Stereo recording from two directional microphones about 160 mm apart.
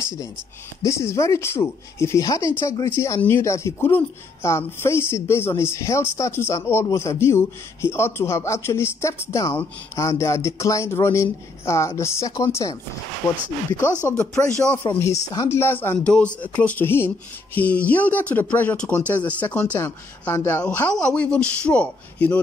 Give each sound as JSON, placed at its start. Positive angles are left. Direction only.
{"t": 0.8, "sound": "speech", "side_deg": 20}
{"t": 14.0, "sound": "speech", "side_deg": 10}